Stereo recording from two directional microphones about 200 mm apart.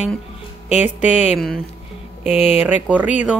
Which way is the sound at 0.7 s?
35° left (ahead or behind).